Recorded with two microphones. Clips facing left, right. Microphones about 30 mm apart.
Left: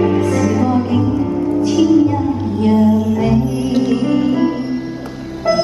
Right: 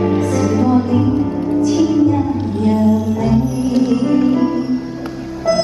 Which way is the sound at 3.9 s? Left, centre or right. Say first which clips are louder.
Right 1 dB; centre.